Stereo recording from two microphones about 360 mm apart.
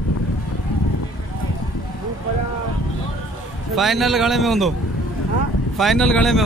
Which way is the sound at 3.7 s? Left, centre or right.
Centre.